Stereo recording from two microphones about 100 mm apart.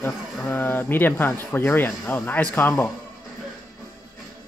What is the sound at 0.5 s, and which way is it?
Speech, 20° left (ahead or behind).